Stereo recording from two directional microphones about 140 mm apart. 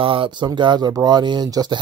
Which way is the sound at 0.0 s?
40° right (ahead or behind).